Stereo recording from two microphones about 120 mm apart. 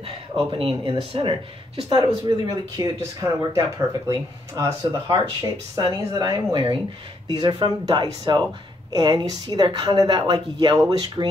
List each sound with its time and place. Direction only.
0.0 s speech: 50° right (ahead or behind)
1.9 s speech: 35° right (ahead or behind)